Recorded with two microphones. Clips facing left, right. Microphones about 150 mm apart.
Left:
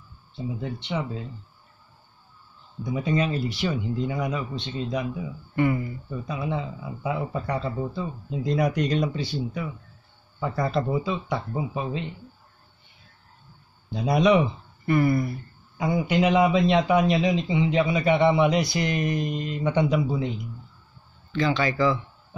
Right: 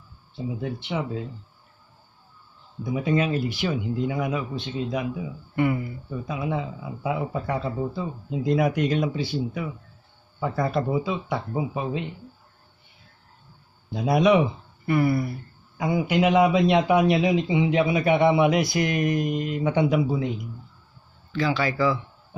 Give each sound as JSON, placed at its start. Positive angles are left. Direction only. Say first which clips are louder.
{"t": 0.4, "sound": "speech", "louder": "right 2 dB", "side_deg": -5}
{"t": 2.8, "sound": "speech", "louder": "right 1 dB", "side_deg": -5}
{"t": 13.9, "sound": "speech", "louder": "right 1 dB", "side_deg": -5}